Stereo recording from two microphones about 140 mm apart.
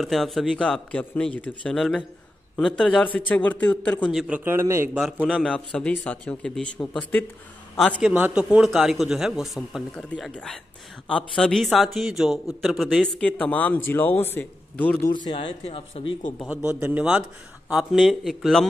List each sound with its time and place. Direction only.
0.0 s a man's voice: centre (ahead or behind)
4.1 s a man's voice: centre (ahead or behind)
4.5 s a man's voice: 20° right (ahead or behind)
5.2 s a man's voice: 5° left (ahead or behind)
7.7 s a man's voice: centre (ahead or behind)
15.2 s speech: 35° left (ahead or behind)
16.4 s a man's voice: 10° right (ahead or behind)